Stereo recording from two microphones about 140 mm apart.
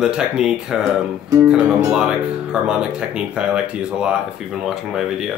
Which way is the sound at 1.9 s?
5° right (ahead or behind).